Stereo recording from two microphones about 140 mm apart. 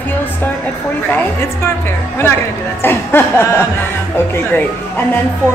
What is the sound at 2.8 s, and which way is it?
Chuckle, 15° left (ahead or behind).